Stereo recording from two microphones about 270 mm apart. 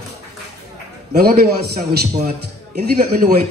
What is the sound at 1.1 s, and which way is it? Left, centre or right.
A man's voice, right.